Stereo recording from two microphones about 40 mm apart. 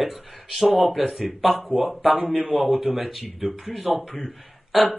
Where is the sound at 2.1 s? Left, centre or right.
Right.